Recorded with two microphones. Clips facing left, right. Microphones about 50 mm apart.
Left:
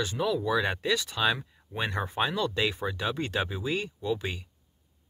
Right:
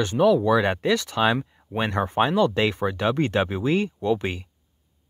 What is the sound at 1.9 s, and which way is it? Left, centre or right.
Speech, right.